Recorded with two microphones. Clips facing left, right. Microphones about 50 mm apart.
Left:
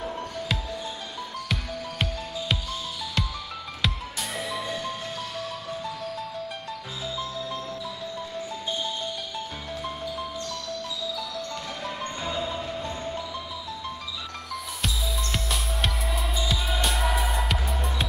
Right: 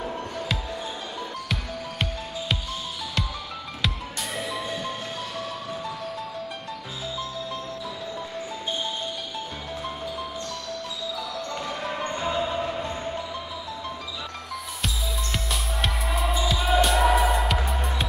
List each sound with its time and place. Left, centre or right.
3.8 s music: centre
11.8 s music: centre
15.3 s music: centre